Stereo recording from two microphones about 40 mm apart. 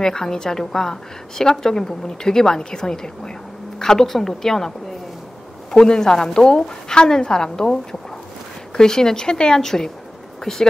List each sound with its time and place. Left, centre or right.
0.0 s a woman's voice: centre